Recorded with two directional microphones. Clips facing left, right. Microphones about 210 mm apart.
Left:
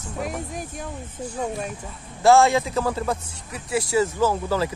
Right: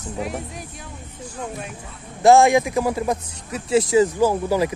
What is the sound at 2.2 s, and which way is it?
A man's voice, 20° right (ahead or behind).